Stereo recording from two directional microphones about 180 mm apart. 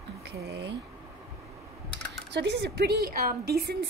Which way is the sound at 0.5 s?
75° right (ahead or behind).